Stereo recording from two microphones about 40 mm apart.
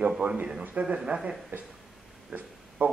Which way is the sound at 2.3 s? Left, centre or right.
Right.